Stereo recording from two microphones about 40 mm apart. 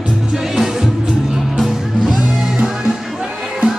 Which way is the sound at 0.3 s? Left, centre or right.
Centre.